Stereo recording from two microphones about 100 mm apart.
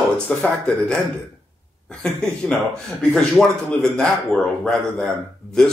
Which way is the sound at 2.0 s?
10° left (ahead or behind).